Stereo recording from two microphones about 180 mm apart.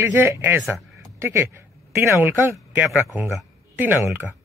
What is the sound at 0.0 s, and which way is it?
Speech, 15° right (ahead or behind).